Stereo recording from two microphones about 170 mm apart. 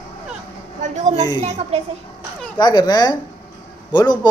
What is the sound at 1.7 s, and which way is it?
Speech, 40° right (ahead or behind).